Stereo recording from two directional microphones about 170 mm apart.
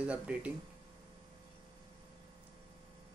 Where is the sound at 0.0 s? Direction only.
5° right (ahead or behind).